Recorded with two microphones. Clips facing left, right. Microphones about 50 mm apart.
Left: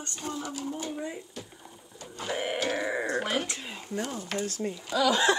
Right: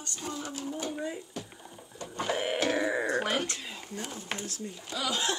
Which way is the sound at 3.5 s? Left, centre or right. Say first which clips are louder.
Left 1 dB; left.